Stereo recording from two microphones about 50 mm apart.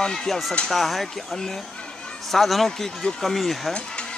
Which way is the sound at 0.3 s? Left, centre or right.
Centre.